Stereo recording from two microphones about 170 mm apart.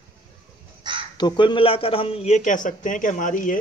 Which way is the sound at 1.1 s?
25° left (ahead or behind).